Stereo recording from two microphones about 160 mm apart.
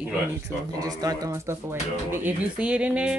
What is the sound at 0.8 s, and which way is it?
Speech, 25° right (ahead or behind).